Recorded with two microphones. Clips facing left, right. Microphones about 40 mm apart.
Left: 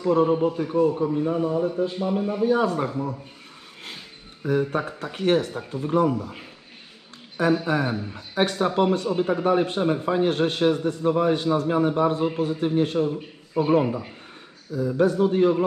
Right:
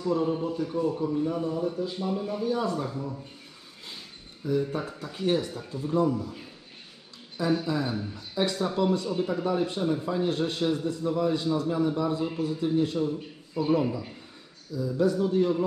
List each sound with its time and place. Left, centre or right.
0.0 s a man's voice: left
5.5 s a man's voice: left
7.6 s a man's voice: left
7.9 s speech: left
8.4 s a man's voice: left